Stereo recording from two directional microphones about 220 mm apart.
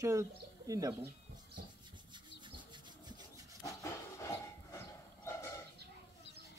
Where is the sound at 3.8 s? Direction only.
15° left (ahead or behind).